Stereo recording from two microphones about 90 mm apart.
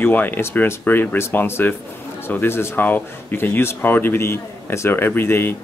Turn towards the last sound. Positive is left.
turn(degrees=25)  # may be behind; listen again after turning